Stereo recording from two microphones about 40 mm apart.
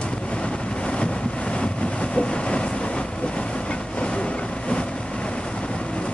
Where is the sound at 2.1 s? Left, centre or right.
Left.